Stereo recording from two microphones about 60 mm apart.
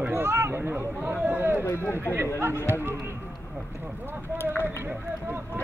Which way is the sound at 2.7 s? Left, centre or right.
Right.